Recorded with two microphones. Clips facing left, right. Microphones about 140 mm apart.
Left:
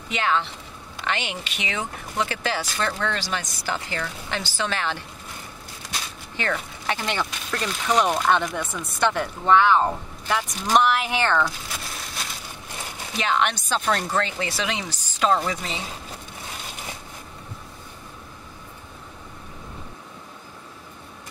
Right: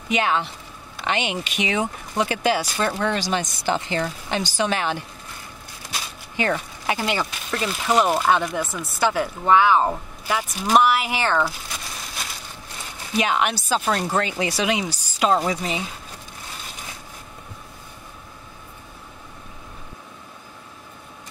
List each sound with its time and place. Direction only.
0.1 s speech: 15° right (ahead or behind)
6.3 s speech: 10° right (ahead or behind)
13.2 s speech: 10° right (ahead or behind)